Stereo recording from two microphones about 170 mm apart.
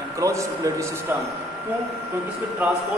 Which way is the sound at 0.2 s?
20° right (ahead or behind).